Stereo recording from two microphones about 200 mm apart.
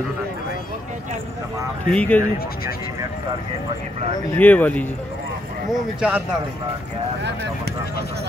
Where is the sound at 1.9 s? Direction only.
5° left (ahead or behind).